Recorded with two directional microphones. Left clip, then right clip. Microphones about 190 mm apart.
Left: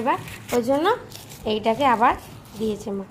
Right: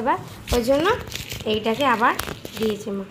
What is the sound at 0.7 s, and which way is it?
A woman's voice, 15° left (ahead or behind).